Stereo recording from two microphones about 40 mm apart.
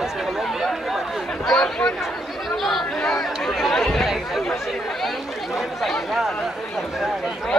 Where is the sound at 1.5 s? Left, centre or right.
Centre.